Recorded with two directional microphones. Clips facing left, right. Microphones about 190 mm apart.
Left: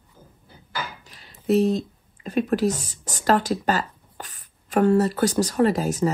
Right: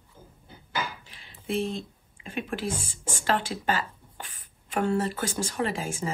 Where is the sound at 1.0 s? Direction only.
40° left (ahead or behind).